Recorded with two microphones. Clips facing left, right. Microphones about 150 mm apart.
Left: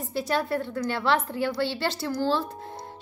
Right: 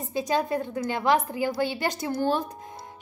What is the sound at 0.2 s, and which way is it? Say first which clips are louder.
A woman's voice: right 1 dB; 15° right (ahead or behind).